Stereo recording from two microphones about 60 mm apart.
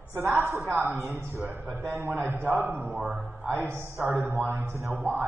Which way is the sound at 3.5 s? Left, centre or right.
Right.